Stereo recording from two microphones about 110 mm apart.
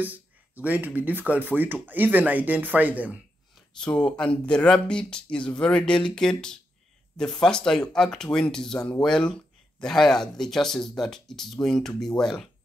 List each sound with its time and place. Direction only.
0.0 s speech: 15° right (ahead or behind)
3.8 s speech: 10° left (ahead or behind)